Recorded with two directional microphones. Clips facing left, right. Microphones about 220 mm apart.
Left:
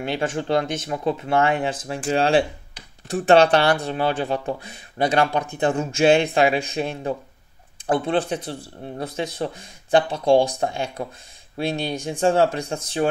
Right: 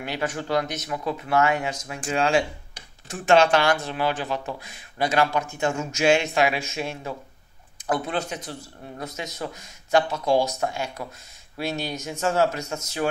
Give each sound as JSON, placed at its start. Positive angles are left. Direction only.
{"t": 0.0, "sound": "speech", "side_deg": 25}